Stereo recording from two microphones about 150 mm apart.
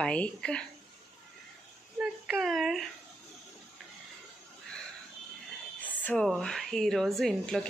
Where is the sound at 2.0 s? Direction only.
Centre (ahead or behind).